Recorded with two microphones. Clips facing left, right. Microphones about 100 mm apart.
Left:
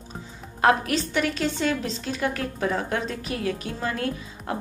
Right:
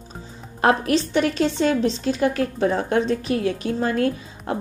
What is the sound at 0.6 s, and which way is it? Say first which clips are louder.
A woman's voice: right 2 dB; 35° right (ahead or behind).